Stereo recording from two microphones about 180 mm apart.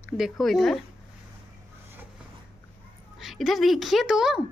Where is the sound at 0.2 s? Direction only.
Centre (ahead or behind).